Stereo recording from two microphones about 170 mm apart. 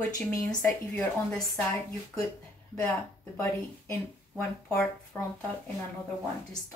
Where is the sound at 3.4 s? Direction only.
15° left (ahead or behind).